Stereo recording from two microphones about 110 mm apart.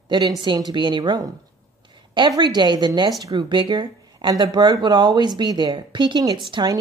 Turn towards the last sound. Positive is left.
turn(degrees=-45)  # may be behind; listen again after turning